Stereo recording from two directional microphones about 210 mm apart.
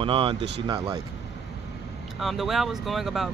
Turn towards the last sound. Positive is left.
turn(degrees=0)  # may be behind; listen again after turning